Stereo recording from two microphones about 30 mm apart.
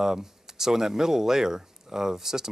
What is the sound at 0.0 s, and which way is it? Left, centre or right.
Speech, centre.